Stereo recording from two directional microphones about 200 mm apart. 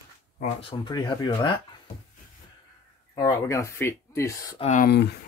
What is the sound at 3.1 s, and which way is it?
Speech, 20° left (ahead or behind).